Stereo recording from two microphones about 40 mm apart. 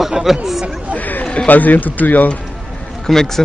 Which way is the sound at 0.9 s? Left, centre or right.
Left.